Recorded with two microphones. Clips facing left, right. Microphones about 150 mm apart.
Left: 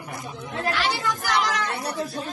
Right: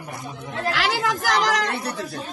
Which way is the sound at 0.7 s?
90° right.